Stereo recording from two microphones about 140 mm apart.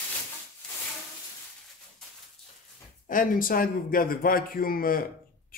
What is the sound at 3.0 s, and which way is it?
Speech, 75° left (ahead or behind).